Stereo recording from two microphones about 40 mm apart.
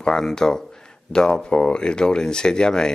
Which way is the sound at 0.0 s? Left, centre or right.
Centre.